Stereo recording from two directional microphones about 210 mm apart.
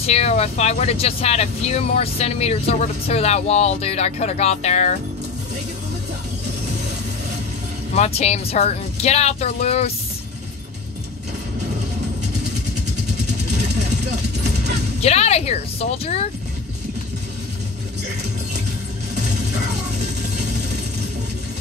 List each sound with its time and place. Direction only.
0.0 s speech: 30° left (ahead or behind)
7.9 s speech: 30° left (ahead or behind)
15.0 s speech: 30° left (ahead or behind)
19.9 s music: 35° right (ahead or behind)